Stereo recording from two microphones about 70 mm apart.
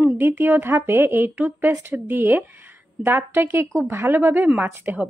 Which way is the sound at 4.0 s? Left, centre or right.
Right.